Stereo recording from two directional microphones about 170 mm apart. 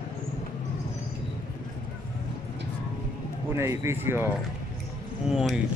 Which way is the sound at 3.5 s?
15° right (ahead or behind).